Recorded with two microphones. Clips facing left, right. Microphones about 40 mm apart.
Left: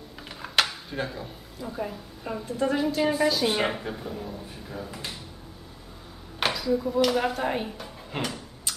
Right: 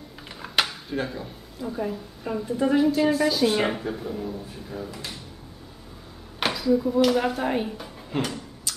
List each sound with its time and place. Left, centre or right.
0.4 s speech: centre
6.4 s speech: centre
8.1 s tick-tock: centre
8.7 s tick-tock: left